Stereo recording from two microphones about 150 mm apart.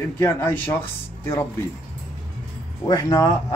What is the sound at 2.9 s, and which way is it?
Speech, 25° left (ahead or behind).